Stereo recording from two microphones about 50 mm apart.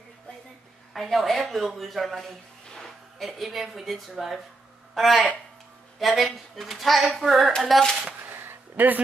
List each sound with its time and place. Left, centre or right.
0.9 s speech: centre
8.3 s a sound: right
8.7 s speech: right